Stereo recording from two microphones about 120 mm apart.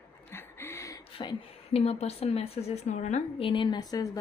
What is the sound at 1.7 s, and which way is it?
Speech, 60° left (ahead or behind).